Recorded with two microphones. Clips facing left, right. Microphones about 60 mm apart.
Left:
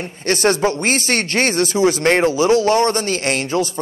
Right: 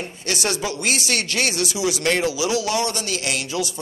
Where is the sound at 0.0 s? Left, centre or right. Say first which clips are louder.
Left 8 dB; left.